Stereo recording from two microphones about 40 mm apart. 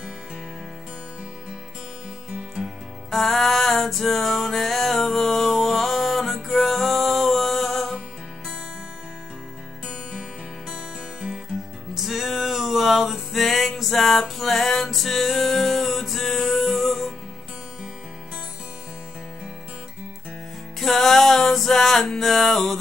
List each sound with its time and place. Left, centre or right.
3.2 s music: centre
10.7 s music: right
11.9 s music: centre
20.8 s music: centre